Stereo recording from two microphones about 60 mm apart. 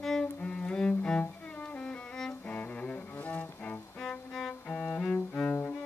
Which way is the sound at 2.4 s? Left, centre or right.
Left.